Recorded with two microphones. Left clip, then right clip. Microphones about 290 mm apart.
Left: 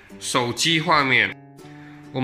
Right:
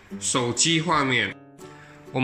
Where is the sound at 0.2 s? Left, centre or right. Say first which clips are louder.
Left 2 dB; centre.